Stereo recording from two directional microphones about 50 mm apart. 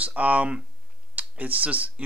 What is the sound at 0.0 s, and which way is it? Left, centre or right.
Speech, right.